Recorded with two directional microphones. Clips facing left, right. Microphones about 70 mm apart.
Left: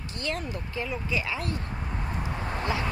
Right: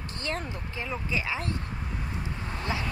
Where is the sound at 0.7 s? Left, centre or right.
Right.